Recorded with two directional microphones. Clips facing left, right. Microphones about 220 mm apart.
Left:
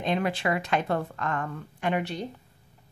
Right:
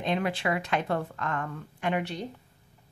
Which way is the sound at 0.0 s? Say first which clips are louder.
Left 1 dB; 40° left (ahead or behind).